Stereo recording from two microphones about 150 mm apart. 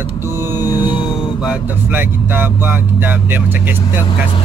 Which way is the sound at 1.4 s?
10° right (ahead or behind).